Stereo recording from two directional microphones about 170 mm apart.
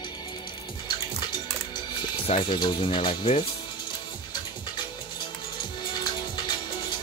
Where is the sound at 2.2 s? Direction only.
30° left (ahead or behind).